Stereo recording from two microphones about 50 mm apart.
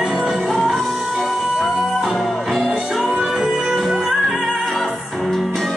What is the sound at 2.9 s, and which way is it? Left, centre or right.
Music, centre.